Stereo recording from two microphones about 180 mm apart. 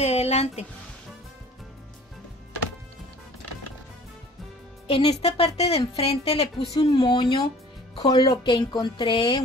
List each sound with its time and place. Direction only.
0.0 s music: 35° left (ahead or behind)
4.8 s a woman's voice: 30° left (ahead or behind)